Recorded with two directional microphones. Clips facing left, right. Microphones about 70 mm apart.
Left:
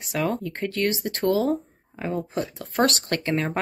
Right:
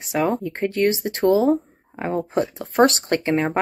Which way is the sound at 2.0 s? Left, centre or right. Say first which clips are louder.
Right 5 dB; right.